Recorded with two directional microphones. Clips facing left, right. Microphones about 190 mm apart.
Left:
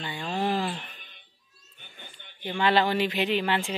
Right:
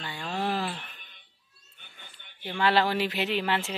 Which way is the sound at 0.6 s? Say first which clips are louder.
Left 2 dB; 15° left (ahead or behind).